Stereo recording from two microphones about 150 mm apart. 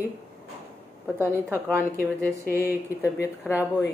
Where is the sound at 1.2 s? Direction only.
15° right (ahead or behind).